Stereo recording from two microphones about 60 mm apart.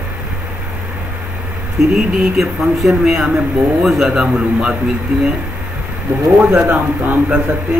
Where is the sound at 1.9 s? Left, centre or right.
Centre.